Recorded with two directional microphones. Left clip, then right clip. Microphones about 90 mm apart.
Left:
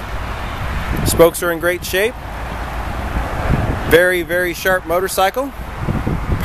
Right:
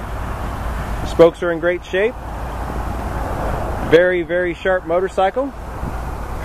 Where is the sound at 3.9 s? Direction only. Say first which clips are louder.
Left 1 dB; 30° left (ahead or behind).